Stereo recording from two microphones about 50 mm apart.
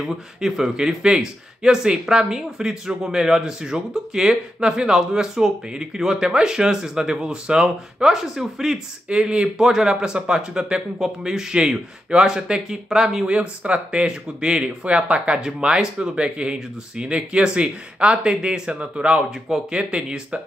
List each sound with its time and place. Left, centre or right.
0.0 s speech: centre
9.1 s speech: centre
13.3 s speech: right